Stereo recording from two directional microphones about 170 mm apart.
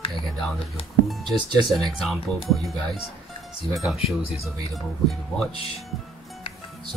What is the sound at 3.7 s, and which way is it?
Speech, centre (ahead or behind).